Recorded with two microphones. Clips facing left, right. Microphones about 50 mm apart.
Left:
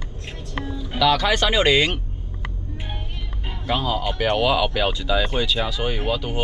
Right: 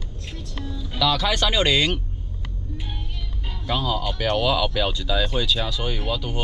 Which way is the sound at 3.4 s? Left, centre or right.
Left.